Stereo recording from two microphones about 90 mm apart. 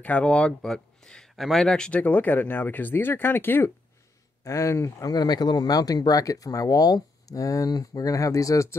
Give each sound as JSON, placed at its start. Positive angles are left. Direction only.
{"t": 0.0, "sound": "speech", "side_deg": 15}